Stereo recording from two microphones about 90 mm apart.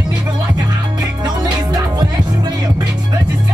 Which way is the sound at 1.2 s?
50° right (ahead or behind).